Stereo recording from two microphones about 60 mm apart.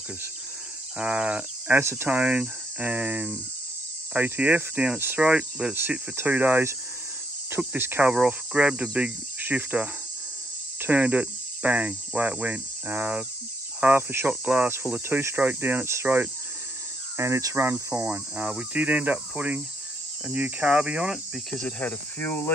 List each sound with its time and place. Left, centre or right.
0.9 s cricket: centre
1.7 s speech: right
5.3 s speech: centre
5.8 s speech: right
8.3 s cricket: centre
12.2 s speech: right
15.0 s speech: right
17.2 s cricket: right
17.6 s speech: right
20.2 s cricket: right
21.6 s speech: left